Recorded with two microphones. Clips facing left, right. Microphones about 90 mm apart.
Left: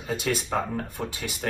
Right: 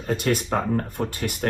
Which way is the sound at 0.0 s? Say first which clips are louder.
Right 4 dB; 55° right (ahead or behind).